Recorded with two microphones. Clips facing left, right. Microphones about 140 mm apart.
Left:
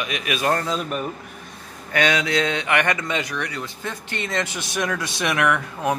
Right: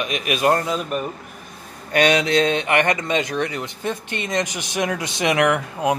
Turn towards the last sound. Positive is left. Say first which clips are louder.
# right 2 dB
turn(degrees=-20)  # may be behind; listen again after turning